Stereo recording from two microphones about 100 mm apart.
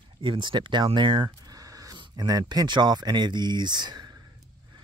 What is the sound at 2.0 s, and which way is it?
Speech, 40° right (ahead or behind).